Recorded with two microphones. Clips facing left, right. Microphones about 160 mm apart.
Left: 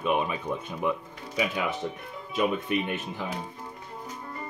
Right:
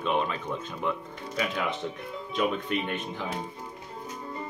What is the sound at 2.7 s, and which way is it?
Speech, 15° left (ahead or behind).